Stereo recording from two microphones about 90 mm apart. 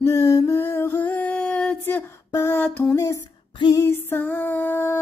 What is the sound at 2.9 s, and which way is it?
Music, 30° left (ahead or behind).